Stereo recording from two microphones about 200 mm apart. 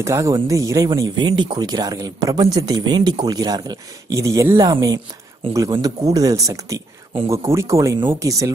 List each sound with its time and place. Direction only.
0.0 s speech: 15° right (ahead or behind)